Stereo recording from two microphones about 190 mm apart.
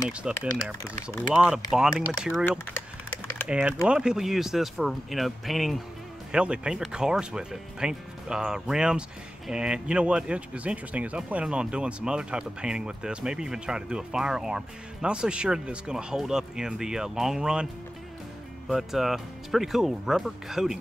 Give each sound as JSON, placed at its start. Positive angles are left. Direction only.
{"t": 0.1, "sound": "speech", "side_deg": -5}
{"t": 3.4, "sound": "speech", "side_deg": -5}
{"t": 18.7, "sound": "speech", "side_deg": 0}